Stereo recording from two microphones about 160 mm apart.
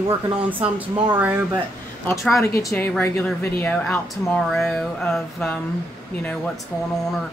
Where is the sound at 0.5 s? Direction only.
10° right (ahead or behind).